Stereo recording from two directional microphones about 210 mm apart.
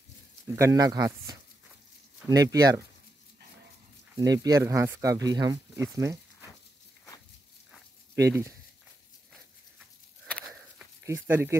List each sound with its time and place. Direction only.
0.6 s speech: 15° right (ahead or behind)
4.2 s speech: 15° right (ahead or behind)
8.2 s speech: 15° right (ahead or behind)
9.8 s a sound: 5° left (ahead or behind)
11.1 s speech: 10° right (ahead or behind)